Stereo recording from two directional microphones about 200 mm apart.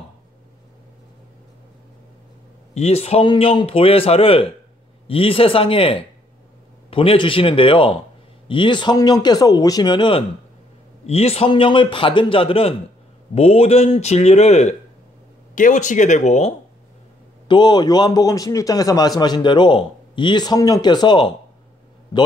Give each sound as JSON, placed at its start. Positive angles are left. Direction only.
{"t": 2.7, "sound": "a man's voice", "side_deg": 30}
{"t": 17.5, "sound": "a man's voice", "side_deg": 20}